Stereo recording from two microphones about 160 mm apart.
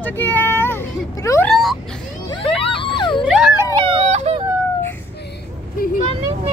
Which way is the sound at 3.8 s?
35° right (ahead or behind).